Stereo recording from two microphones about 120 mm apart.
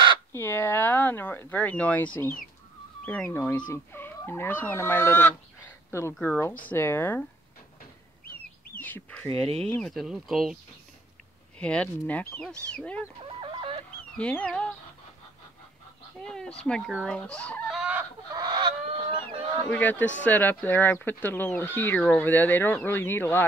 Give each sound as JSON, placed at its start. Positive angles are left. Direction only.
{"t": 0.3, "sound": "speech", "side_deg": 20}
{"t": 3.3, "sound": "speech", "side_deg": 15}
{"t": 8.7, "sound": "speech", "side_deg": 15}
{"t": 9.3, "sound": "speech", "side_deg": -55}
{"t": 9.7, "sound": "speech", "side_deg": 5}
{"t": 11.5, "sound": "speech", "side_deg": 10}
{"t": 13.4, "sound": "chicken", "side_deg": -50}
{"t": 14.1, "sound": "speech", "side_deg": 10}
{"t": 16.3, "sound": "speech", "side_deg": 5}
{"t": 17.7, "sound": "chicken", "side_deg": -10}
{"t": 18.3, "sound": "chicken", "side_deg": -35}
{"t": 19.2, "sound": "speech", "side_deg": 15}